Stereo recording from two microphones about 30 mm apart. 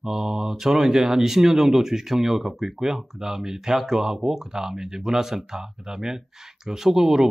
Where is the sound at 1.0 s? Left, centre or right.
Centre.